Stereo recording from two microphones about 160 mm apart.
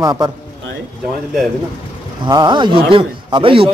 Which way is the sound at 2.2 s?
30° right (ahead or behind).